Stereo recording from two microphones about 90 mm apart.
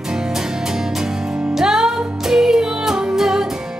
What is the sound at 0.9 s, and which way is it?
Music, 5° right (ahead or behind).